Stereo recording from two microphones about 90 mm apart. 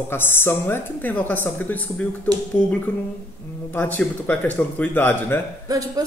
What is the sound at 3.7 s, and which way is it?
A man's voice, 20° left (ahead or behind).